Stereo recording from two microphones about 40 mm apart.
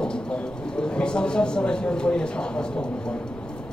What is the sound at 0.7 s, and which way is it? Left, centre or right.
Speech, left.